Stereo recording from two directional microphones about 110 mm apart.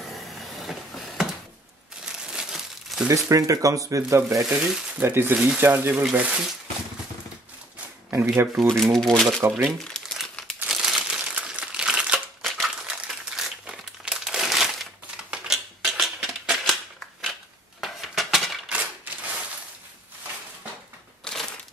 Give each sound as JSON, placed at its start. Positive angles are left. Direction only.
{"t": 0.6, "sound": "a sound", "side_deg": 0}
{"t": 2.0, "sound": "crumpling", "side_deg": -5}
{"t": 3.1, "sound": "speech", "side_deg": -30}
{"t": 4.4, "sound": "speech", "side_deg": -5}
{"t": 5.0, "sound": "speech", "side_deg": -20}
{"t": 8.1, "sound": "speech", "side_deg": -25}
{"t": 8.5, "sound": "speech", "side_deg": 0}
{"t": 9.6, "sound": "crumpling", "side_deg": 5}
{"t": 10.7, "sound": "crushing", "side_deg": -5}
{"t": 12.6, "sound": "crumpling", "side_deg": -10}
{"t": 15.3, "sound": "a sound", "side_deg": -5}
{"t": 17.2, "sound": "dishes", "side_deg": 0}
{"t": 21.2, "sound": "crushing", "side_deg": 5}